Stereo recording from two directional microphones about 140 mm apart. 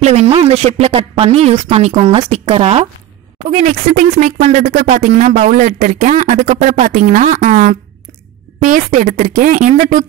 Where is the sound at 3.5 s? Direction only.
60° right (ahead or behind).